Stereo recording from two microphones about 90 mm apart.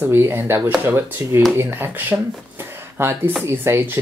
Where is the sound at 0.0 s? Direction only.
25° right (ahead or behind).